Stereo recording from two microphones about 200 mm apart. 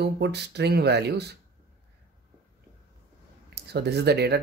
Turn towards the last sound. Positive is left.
turn(degrees=-55)  # may be behind; listen again after turning